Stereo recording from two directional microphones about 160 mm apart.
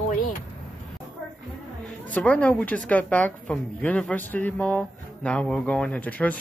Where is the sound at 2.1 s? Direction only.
10° left (ahead or behind).